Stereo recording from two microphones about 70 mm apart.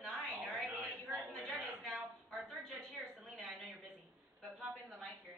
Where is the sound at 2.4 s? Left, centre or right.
Centre.